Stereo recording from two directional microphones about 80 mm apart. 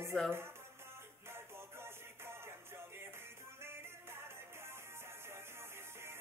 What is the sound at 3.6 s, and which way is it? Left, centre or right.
Music, right.